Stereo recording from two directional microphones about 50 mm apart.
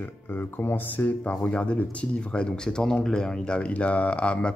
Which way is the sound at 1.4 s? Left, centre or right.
Left.